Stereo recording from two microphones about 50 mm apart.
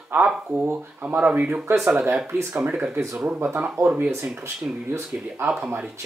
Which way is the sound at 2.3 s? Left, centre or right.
Right.